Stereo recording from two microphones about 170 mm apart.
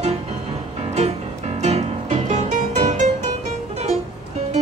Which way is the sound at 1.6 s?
45° right (ahead or behind).